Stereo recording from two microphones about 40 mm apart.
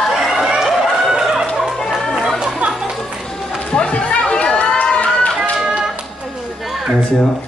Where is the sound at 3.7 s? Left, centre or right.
Left.